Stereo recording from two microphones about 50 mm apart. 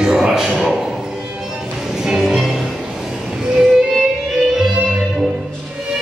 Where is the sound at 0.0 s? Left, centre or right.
Centre.